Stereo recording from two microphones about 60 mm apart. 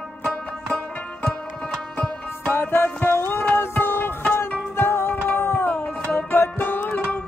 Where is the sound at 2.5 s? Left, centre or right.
Left.